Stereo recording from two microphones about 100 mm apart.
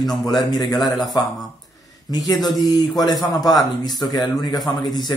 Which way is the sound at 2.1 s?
40° left (ahead or behind).